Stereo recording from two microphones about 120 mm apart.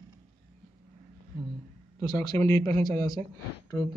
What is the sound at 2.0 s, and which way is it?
Speech, 30° left (ahead or behind).